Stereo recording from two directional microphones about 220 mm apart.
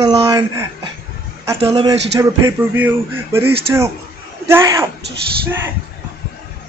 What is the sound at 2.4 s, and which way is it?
Speech, 10° right (ahead or behind).